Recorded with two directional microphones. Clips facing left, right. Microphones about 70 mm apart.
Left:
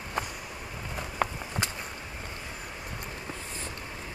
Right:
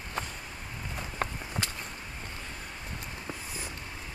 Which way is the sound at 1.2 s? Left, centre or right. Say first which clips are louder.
Left 4 dB; centre.